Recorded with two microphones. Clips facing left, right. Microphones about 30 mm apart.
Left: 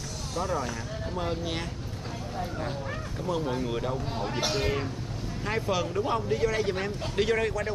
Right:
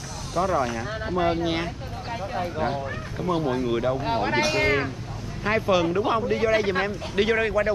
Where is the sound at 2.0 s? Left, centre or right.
Right.